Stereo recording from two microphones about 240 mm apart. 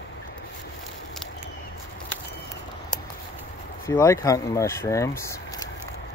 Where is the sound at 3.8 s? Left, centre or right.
Centre.